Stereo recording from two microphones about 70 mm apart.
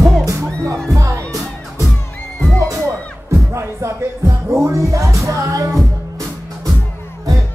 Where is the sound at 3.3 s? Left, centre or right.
Right.